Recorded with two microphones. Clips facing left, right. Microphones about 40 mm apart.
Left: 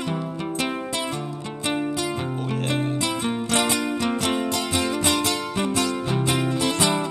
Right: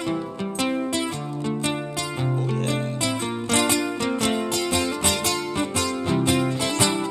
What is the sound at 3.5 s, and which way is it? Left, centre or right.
Music, left.